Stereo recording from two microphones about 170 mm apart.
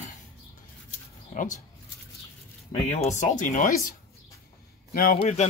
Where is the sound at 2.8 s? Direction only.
45° left (ahead or behind).